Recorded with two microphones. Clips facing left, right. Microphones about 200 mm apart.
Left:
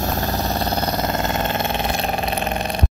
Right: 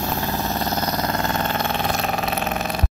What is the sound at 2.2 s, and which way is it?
Vehicle, centre (ahead or behind).